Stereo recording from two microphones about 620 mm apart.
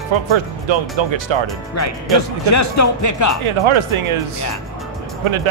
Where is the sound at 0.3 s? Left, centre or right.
Right.